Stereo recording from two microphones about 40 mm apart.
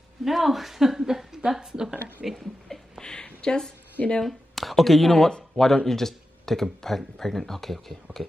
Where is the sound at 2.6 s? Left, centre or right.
Centre.